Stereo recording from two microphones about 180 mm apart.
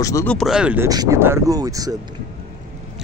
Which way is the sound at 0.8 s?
20° right (ahead or behind).